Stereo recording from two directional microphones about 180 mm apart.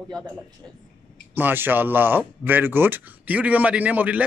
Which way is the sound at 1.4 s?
10° right (ahead or behind).